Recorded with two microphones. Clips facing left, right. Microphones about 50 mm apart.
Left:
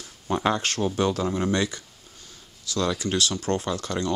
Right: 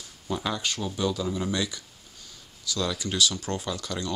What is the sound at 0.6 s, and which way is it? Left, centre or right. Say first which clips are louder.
Speech: left 5 dB; left.